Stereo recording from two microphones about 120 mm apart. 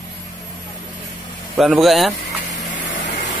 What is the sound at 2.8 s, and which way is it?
Vehicle, 90° left.